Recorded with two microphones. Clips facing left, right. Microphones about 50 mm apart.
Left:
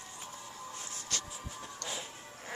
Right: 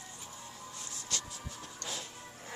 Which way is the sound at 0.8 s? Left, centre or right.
Left.